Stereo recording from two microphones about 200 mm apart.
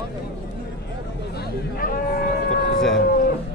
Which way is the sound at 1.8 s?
45° left (ahead or behind).